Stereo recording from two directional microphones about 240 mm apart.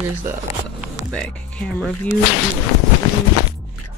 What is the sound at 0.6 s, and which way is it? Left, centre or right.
Music, centre.